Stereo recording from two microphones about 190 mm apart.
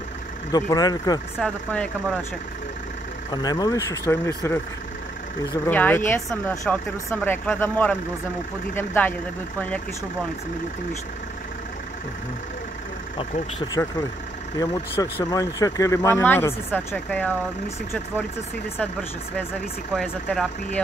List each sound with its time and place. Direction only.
0.5 s speech: 20° left (ahead or behind)
1.4 s speech: 5° left (ahead or behind)
3.3 s speech: 20° left (ahead or behind)
14.6 s speech: 20° left (ahead or behind)
19.9 s speech: 5° left (ahead or behind)